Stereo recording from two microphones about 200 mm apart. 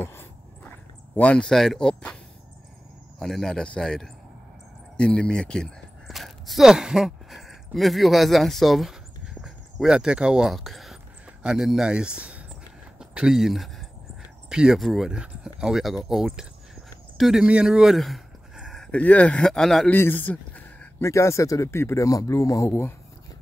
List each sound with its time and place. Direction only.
0.0 s dog: 10° left (ahead or behind)
1.1 s speech: 5° left (ahead or behind)
3.2 s speech: centre (ahead or behind)